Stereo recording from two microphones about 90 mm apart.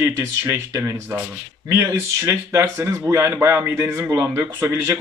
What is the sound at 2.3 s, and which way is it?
A man's voice, 35° right (ahead or behind).